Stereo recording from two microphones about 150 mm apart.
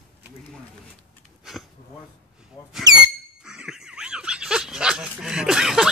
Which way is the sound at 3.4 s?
5° right (ahead or behind).